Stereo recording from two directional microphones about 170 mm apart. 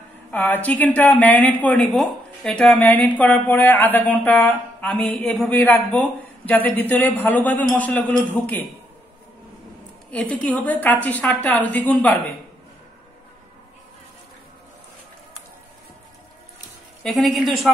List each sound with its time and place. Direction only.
0.3 s speech: 10° left (ahead or behind)
10.3 s speech: 10° left (ahead or behind)
17.0 s a woman's voice: centre (ahead or behind)